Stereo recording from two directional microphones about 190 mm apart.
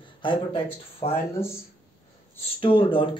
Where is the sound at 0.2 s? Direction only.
25° left (ahead or behind).